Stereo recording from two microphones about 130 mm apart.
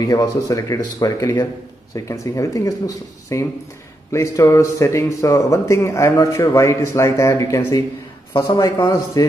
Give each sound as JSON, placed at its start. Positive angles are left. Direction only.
{"t": 0.0, "sound": "speech", "side_deg": 30}